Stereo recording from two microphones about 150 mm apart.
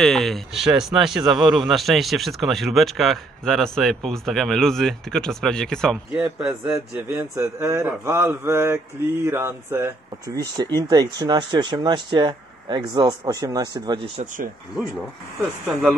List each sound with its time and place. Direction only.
0.0 s speech: centre (ahead or behind)
6.1 s speech: 10° right (ahead or behind); by 13.9 s 25° right (ahead or behind)